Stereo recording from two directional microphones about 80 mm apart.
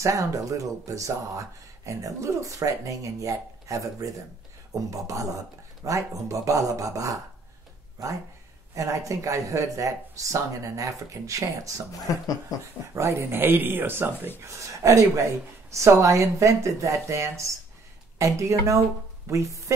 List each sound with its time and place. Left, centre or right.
0.0 s speech: right
8.7 s speech: right
12.9 s speech: right
14.4 s speech: right